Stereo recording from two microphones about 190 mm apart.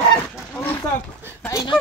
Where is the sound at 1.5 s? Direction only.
20° left (ahead or behind).